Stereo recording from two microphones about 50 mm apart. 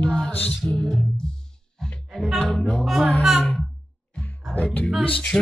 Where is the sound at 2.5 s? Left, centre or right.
Centre.